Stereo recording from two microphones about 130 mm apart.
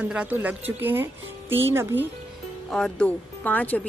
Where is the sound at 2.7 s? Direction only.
5° left (ahead or behind).